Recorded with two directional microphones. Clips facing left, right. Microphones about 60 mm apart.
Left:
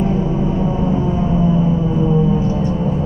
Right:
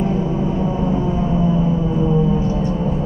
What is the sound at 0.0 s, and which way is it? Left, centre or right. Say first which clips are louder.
Vehicle: left 2 dB; left.